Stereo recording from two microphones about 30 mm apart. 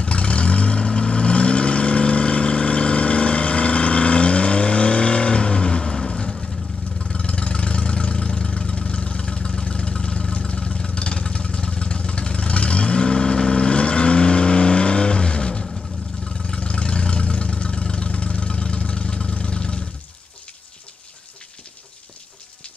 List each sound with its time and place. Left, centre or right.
0.0 s vehicle: left
7.1 s engine: left
9.3 s vehicle: left
10.3 s vehicle: left
10.6 s vehicle: left